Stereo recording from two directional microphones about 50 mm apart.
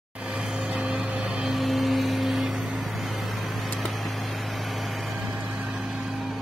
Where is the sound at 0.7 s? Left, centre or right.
Centre.